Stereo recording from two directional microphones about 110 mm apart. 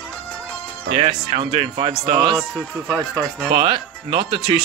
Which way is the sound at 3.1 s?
10° left (ahead or behind).